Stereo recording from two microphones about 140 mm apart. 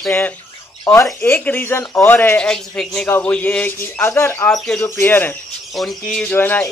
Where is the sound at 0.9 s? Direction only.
25° left (ahead or behind).